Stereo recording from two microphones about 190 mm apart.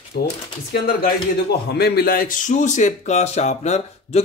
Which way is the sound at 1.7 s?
55° left (ahead or behind).